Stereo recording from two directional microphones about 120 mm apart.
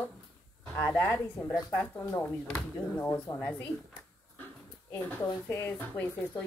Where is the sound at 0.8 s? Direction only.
20° left (ahead or behind).